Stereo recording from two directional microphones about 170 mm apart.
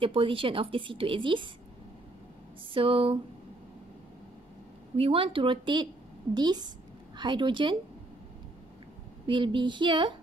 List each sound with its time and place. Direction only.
0.0 s speech: 30° right (ahead or behind)
2.7 s speech: 30° right (ahead or behind)
4.9 s speech: 35° right (ahead or behind)
9.2 s speech: 30° right (ahead or behind)